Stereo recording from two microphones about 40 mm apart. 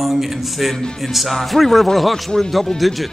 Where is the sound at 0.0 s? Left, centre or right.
Centre.